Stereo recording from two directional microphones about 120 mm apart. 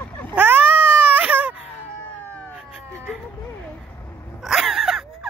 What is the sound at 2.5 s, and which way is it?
Cat, 5° right (ahead or behind).